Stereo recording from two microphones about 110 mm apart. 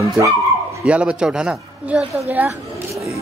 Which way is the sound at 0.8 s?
10° right (ahead or behind).